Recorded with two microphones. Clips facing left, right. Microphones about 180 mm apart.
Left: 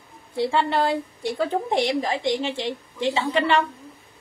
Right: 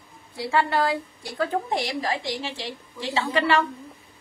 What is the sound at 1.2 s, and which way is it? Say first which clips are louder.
Speech: left 2 dB; centre (ahead or behind).